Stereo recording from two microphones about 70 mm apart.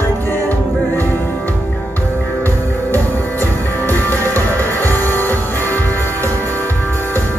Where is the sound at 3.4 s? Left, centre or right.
Left.